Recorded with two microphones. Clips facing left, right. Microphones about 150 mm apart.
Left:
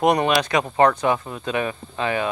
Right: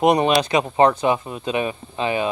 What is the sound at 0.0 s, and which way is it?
Speech, 20° right (ahead or behind).